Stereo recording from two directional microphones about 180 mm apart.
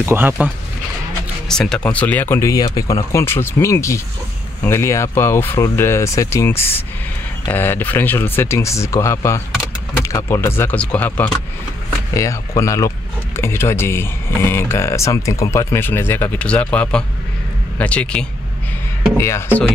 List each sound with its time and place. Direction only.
0.0 s speech: 10° right (ahead or behind)
1.5 s speech: 5° left (ahead or behind)